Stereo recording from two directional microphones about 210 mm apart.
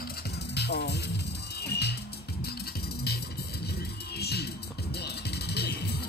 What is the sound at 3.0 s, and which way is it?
Music, 50° left (ahead or behind).